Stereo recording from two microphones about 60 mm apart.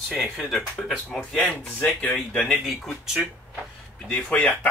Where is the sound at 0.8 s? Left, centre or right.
Left.